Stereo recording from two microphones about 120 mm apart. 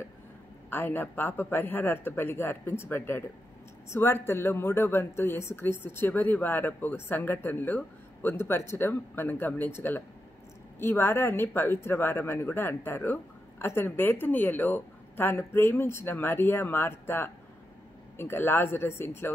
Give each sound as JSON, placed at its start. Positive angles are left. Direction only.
{"t": 0.7, "sound": "speech", "side_deg": 15}